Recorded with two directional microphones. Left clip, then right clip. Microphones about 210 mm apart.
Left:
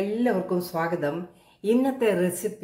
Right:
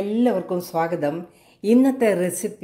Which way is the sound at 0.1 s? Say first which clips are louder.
Right 3 dB; 25° right (ahead or behind).